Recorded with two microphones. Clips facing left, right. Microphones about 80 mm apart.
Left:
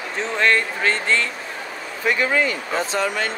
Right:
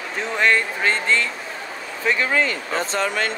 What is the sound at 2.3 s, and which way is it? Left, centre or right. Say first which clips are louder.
Speech: left 1 dB; right.